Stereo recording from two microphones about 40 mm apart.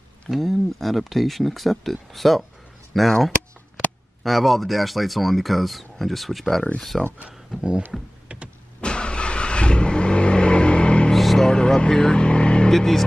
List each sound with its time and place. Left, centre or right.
0.3 s speech: centre
3.1 s speech: centre
4.2 s speech: centre
8.8 s vehicle: left
11.1 s vehicle: centre
11.4 s speech: centre
12.7 s speech: centre